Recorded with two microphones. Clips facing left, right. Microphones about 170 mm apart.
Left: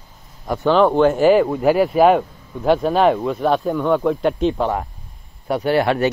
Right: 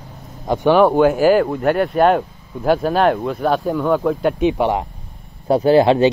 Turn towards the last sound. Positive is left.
turn(degrees=-20)  # may be behind; listen again after turning